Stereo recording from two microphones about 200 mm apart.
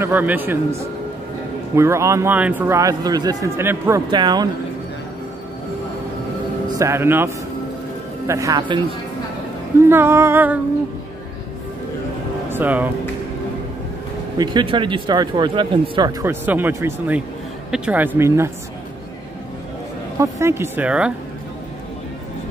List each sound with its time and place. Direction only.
0.0 s a man's voice: 10° right (ahead or behind)
1.8 s a man's voice: 15° right (ahead or behind)
6.8 s a man's voice: 15° right (ahead or behind)
12.4 s speech: 10° right (ahead or behind)
14.4 s a man's voice: 25° right (ahead or behind)
20.2 s a man's voice: 15° right (ahead or behind)